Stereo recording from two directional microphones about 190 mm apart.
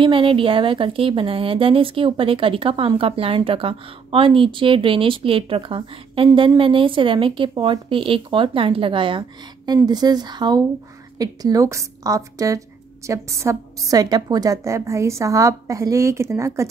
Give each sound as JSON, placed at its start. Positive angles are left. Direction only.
{"t": 0.0, "sound": "a woman's voice", "side_deg": -30}